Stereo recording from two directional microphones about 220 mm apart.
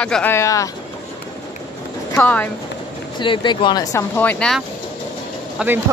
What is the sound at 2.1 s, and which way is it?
Speech, 10° left (ahead or behind).